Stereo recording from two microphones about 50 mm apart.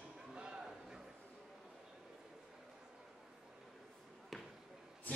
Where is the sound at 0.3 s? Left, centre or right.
Centre.